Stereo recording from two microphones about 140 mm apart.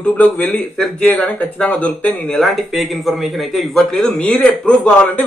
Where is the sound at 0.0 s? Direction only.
10° left (ahead or behind).